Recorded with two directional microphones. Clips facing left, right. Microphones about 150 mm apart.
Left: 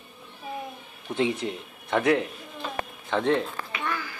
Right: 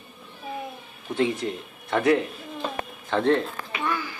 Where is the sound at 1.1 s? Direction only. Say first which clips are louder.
Right 1 dB; centre (ahead or behind).